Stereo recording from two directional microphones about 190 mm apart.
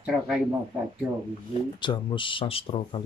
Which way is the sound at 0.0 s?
5° right (ahead or behind).